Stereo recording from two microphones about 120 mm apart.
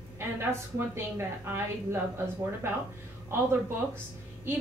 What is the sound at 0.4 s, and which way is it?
A woman's voice, 20° right (ahead or behind).